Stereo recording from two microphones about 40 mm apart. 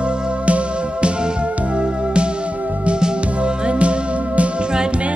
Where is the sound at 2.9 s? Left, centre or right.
Right.